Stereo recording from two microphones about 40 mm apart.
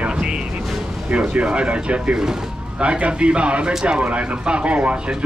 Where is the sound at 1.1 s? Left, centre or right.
Right.